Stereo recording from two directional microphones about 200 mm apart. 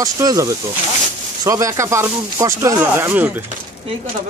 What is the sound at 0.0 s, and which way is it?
Speech, 20° right (ahead or behind).